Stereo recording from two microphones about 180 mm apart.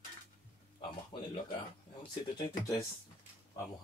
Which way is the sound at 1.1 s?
25° left (ahead or behind).